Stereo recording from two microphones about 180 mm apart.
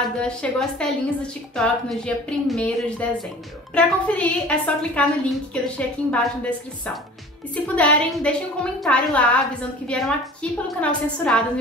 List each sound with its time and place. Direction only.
0.2 s a woman's voice: 5° left (ahead or behind)
7.5 s a woman's voice: 5° left (ahead or behind)